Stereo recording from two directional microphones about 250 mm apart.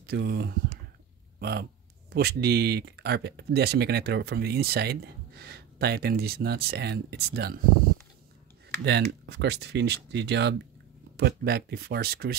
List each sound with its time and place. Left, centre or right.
0.0 s speech: right
8.8 s speech: right